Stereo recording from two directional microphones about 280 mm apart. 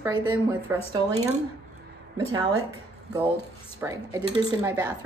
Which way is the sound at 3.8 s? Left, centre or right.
Centre.